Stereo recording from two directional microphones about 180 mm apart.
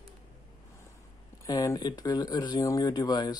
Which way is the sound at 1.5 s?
20° left (ahead or behind).